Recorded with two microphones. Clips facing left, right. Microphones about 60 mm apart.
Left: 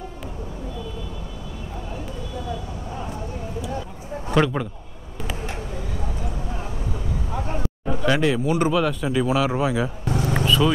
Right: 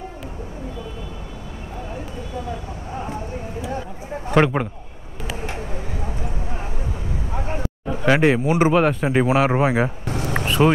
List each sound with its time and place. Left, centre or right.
4.3 s speech: right
7.3 s a sound: right
8.7 s speech: right